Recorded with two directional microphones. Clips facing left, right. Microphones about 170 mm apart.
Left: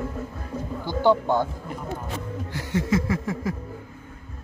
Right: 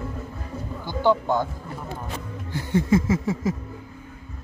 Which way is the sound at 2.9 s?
20° right (ahead or behind).